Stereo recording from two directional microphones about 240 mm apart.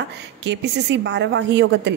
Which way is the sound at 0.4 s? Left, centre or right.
Right.